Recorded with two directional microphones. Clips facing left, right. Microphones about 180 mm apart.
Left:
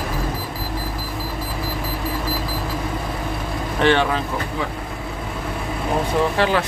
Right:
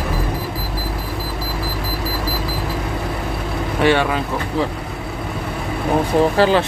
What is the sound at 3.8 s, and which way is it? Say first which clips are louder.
Speech: right 1 dB; 10° right (ahead or behind).